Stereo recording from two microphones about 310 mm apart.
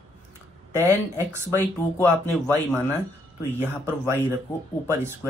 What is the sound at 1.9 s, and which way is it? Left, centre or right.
Speech, centre.